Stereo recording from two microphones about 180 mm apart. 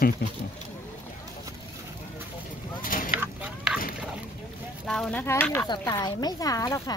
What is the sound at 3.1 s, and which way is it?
Chicken, 10° right (ahead or behind).